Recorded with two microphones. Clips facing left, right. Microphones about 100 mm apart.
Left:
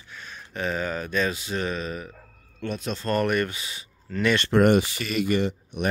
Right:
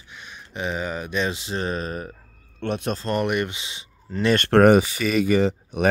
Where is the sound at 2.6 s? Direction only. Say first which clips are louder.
Right 4 dB; 60° right (ahead or behind).